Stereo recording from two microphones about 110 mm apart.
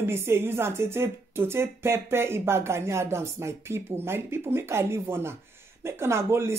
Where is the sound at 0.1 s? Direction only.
20° right (ahead or behind).